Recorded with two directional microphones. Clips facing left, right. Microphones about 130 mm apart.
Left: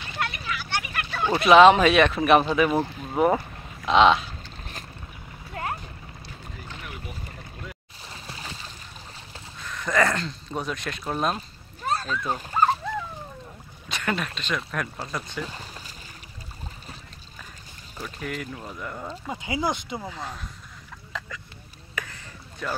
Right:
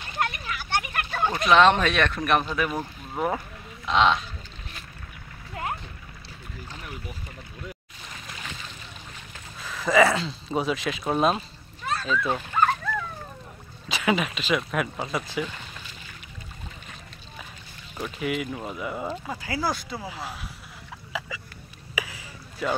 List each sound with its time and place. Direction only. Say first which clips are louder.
0.0 s a sound: right 2 dB; 45° right (ahead or behind)
1.4 s speech: left 5 dB; 5° left (ahead or behind)
5.6 s a sound: even; 20° right (ahead or behind)
6.7 s boat: even; 35° right (ahead or behind)
8.1 s boat: left 1 dB; 30° left (ahead or behind)
9.6 s speech: right 4 dB; 5° right (ahead or behind)
11.8 s splash: left 2 dB; 35° left (ahead or behind)
12.4 s dog: left 1 dB; 35° left (ahead or behind)
13.8 s speech: right 4 dB; 5° right (ahead or behind)
15.4 s speech: right 1 dB; 35° left (ahead or behind)
17.9 s speech: right 5 dB; 10° right (ahead or behind)
19.3 s speech: left 3 dB; 20° left (ahead or behind)
20.0 s speech: even; 5° right (ahead or behind)
21.1 s a sound: right 3 dB; 5° right (ahead or behind)